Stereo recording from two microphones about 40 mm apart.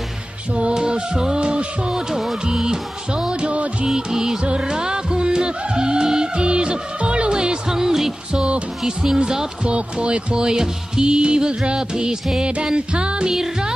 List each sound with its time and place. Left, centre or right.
0.7 s music: centre
8.3 s music: right
8.8 s speech: centre
9.7 s music: right
13.3 s speech: centre